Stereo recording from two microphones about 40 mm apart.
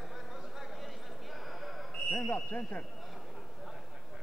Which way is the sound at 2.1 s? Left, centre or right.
Left.